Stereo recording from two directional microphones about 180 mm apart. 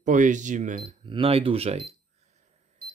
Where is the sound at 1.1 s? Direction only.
30° right (ahead or behind).